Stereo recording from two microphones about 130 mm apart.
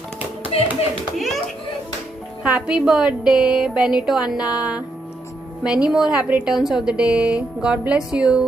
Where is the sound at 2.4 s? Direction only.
10° right (ahead or behind).